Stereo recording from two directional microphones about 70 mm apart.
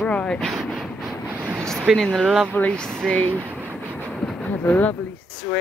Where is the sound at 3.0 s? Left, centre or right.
Centre.